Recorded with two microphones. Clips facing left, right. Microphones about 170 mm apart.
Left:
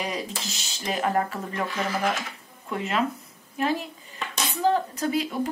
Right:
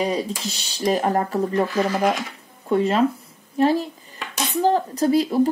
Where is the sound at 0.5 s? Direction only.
35° right (ahead or behind).